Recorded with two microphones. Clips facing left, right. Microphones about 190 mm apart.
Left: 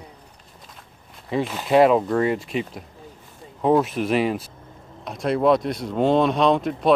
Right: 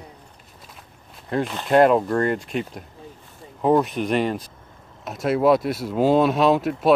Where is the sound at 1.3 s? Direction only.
Centre (ahead or behind).